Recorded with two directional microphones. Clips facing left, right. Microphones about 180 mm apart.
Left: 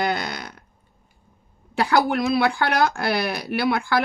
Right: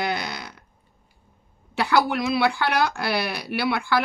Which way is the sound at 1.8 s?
50° left (ahead or behind).